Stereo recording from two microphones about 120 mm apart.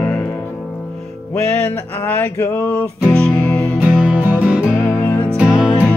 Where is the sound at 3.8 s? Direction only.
10° right (ahead or behind).